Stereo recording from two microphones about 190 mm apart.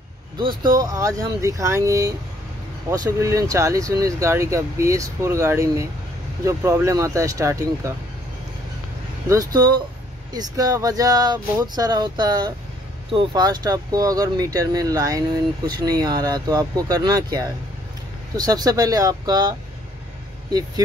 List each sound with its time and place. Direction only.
0.7 s speech: 20° right (ahead or behind)
9.3 s speech: 20° right (ahead or behind)